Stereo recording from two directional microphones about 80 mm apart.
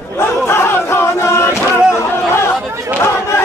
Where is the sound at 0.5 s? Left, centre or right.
Left.